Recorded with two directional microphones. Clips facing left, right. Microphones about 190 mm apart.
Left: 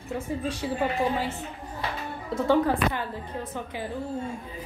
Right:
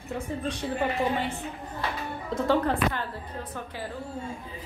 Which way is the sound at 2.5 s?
10° left (ahead or behind).